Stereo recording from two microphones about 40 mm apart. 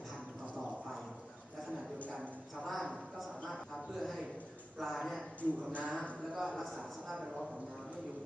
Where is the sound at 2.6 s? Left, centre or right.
Centre.